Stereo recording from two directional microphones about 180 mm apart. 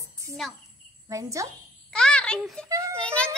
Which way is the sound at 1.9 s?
5° left (ahead or behind).